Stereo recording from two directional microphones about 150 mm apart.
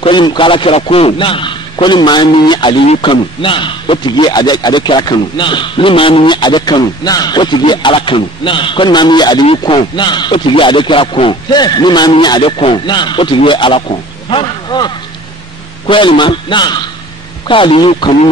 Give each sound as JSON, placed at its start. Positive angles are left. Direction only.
{"t": 0.0, "sound": "a man's voice", "side_deg": 30}
{"t": 15.9, "sound": "a man's voice", "side_deg": 35}